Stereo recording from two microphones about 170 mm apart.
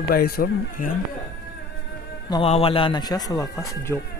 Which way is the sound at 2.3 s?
35° left (ahead or behind).